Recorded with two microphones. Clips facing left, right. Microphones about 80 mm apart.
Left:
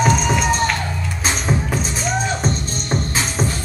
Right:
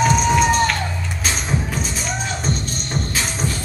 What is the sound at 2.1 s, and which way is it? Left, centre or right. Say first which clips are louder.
Music: left 6 dB; centre.